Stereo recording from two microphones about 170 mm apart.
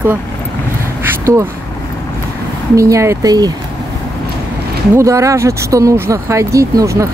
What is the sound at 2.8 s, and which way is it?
Speech, 20° right (ahead or behind).